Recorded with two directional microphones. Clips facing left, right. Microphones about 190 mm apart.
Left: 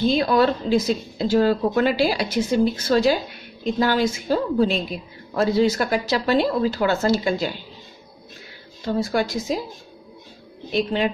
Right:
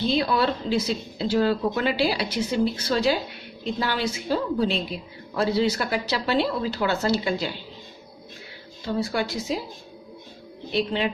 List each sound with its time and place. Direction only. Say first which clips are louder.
0.0 s speech: left 4 dB; 45° left (ahead or behind)
8.8 s speech: left 4 dB; 45° left (ahead or behind)
10.7 s speech: left 3 dB; 45° left (ahead or behind)